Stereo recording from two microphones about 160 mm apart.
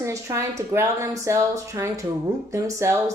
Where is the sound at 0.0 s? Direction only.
20° right (ahead or behind).